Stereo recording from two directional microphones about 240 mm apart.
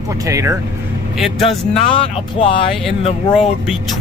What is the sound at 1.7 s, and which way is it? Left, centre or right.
Speech, left.